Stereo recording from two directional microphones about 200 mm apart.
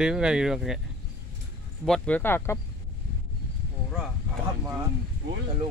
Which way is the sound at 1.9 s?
5° left (ahead or behind).